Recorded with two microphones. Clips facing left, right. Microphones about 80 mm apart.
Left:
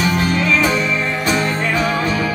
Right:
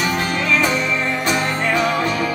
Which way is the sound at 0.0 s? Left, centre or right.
Right.